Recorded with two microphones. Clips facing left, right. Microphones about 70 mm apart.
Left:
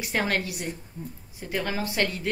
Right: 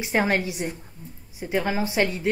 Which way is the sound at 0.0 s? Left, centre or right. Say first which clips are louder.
Right 4 dB; right.